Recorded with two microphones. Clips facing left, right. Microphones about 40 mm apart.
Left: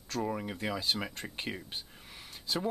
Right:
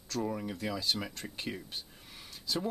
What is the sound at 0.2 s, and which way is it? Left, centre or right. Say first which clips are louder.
Speech: left 1 dB; left.